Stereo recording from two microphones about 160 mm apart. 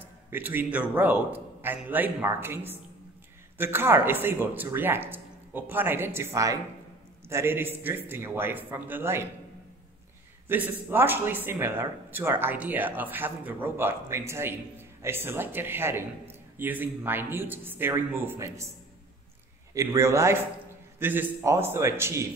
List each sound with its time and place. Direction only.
0.3 s speech: 10° right (ahead or behind)
10.5 s speech: 10° right (ahead or behind)
19.7 s speech: 20° right (ahead or behind)